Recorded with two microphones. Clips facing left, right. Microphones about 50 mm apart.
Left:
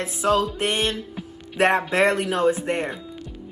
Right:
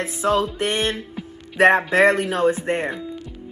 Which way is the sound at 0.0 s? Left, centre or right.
Right.